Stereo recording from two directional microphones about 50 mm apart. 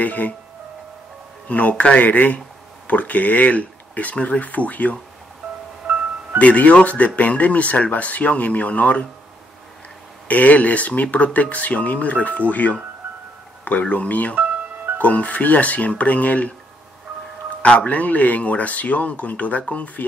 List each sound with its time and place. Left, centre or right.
0.0 s speech: left
1.5 s speech: left
6.3 s speech: left
10.2 s speech: left
14.3 s music: right
15.0 s speech: left
17.6 s speech: left